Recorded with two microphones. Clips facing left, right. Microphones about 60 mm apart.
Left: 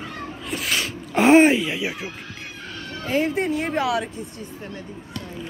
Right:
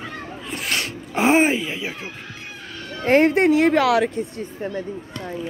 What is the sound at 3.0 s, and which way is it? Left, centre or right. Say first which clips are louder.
Speech: right 7 dB; right.